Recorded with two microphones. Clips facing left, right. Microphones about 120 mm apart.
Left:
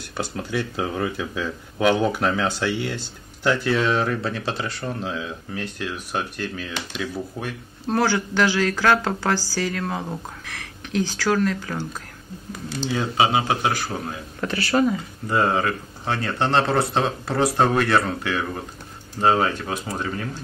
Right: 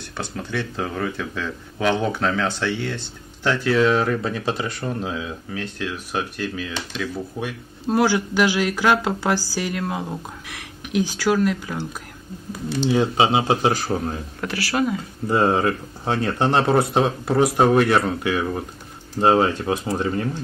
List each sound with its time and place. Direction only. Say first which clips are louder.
0.2 s speech: left 1 dB; 5° left (ahead or behind); by 11.8 s 10° right (ahead or behind)
12.8 s speech: right 3 dB; 20° right (ahead or behind)
14.4 s speech: left 2 dB; 5° right (ahead or behind)
15.2 s speech: right 3 dB; 20° right (ahead or behind)